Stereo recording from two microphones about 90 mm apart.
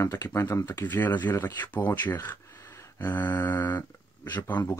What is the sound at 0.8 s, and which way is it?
Speech, 20° left (ahead or behind).